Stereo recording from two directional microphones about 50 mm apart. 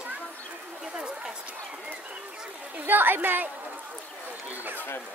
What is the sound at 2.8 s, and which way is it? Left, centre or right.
Speech, right.